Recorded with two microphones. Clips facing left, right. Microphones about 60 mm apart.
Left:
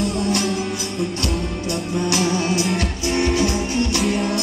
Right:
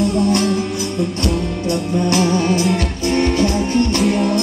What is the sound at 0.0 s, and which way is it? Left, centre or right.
Music, centre.